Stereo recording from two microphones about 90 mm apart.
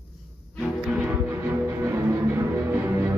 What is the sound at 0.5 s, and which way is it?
Music, centre (ahead or behind).